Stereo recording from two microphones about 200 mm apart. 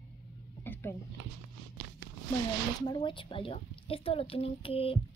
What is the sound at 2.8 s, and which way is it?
Speech, 20° left (ahead or behind).